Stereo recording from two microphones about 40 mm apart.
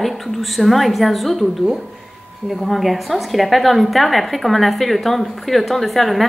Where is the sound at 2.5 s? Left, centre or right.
Centre.